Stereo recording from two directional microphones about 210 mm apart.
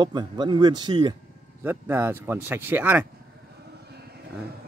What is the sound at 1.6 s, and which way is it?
Speech, 10° right (ahead or behind).